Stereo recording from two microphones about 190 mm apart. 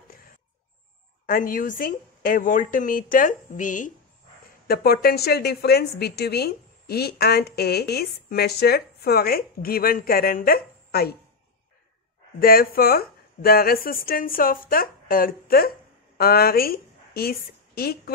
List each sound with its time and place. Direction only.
1.2 s speech: 45° left (ahead or behind)
4.6 s a woman's voice: 55° left (ahead or behind)
12.4 s a woman's voice: 50° left (ahead or behind)